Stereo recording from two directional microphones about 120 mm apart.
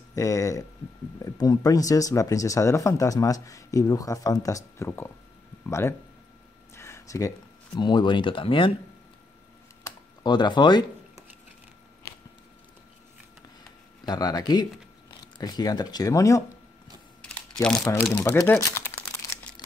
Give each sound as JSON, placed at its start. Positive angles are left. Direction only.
{"t": 0.1, "sound": "speech", "side_deg": 25}
{"t": 10.2, "sound": "speech", "side_deg": 40}
{"t": 14.0, "sound": "speech", "side_deg": 35}
{"t": 17.2, "sound": "typing", "side_deg": 5}
{"t": 18.2, "sound": "speech", "side_deg": 20}